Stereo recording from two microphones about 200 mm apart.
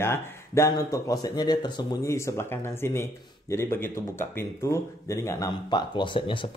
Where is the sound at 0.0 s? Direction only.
15° left (ahead or behind).